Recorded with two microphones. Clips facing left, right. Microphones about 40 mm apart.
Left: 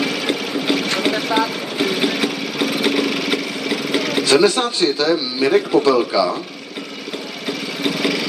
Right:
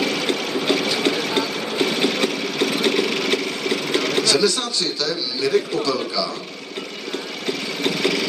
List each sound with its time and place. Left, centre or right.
0.0 s water: centre
1.0 s sewing machine: centre
4.2 s a man's voice: left
7.4 s vehicle: centre